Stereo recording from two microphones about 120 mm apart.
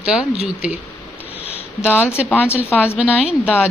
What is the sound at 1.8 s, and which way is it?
Speech, 15° left (ahead or behind).